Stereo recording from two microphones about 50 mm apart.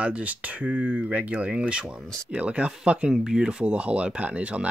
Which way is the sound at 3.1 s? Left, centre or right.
Centre.